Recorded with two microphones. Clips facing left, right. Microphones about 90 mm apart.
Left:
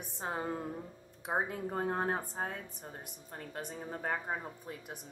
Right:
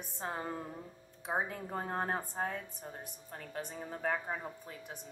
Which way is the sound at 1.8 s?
10° left (ahead or behind).